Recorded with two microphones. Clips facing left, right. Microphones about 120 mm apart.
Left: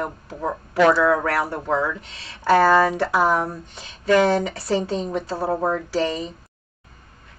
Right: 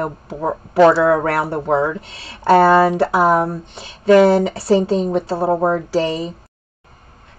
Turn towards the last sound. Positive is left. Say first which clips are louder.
# right 4 dB
turn(degrees=-30)  # may be behind; listen again after turning